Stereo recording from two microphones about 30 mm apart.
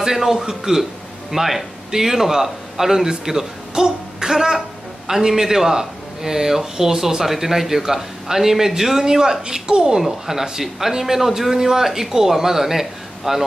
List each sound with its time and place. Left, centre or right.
0.0 s a man's voice: centre
3.3 s a man's voice: right
7.2 s a man's voice: centre
9.0 s speech: centre
9.9 s a man's voice: centre
11.5 s a man's voice: centre